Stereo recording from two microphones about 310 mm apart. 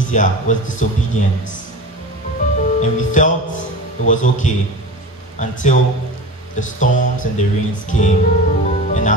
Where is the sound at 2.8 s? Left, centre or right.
Left.